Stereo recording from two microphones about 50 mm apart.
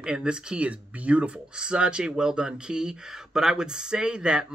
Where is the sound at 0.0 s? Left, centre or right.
Centre.